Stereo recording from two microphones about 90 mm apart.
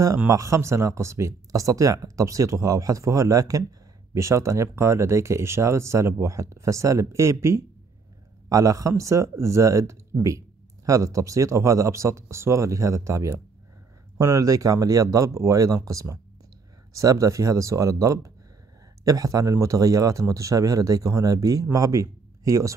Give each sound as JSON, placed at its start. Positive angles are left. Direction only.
{"t": 0.3, "sound": "speech", "side_deg": -35}